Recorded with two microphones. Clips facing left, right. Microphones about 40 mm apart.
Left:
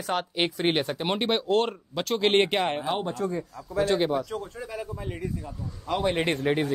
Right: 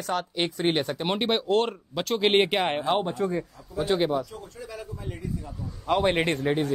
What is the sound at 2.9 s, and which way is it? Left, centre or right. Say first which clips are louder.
Speech: right 3 dB; right.